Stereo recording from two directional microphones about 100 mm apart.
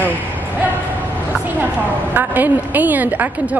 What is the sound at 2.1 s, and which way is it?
A woman's voice, 20° right (ahead or behind).